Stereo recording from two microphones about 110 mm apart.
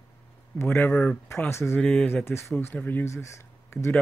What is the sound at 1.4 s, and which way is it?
Speech, 20° left (ahead or behind).